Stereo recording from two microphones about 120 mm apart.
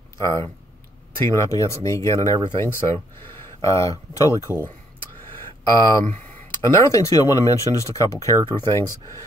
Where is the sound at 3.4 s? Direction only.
25° left (ahead or behind).